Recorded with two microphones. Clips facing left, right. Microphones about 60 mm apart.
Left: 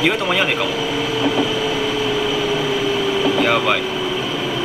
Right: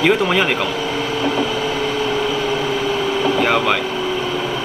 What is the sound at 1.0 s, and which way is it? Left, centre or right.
Vehicle, right.